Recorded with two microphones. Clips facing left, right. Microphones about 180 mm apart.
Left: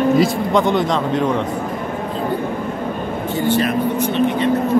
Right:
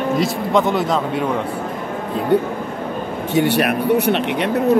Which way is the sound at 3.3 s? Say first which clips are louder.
Right 2 dB; 75° right (ahead or behind).